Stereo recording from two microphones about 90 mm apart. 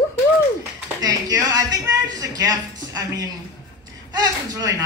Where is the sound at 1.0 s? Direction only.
45° right (ahead or behind).